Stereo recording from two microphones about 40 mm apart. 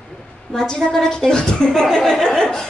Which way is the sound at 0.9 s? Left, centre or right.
Centre.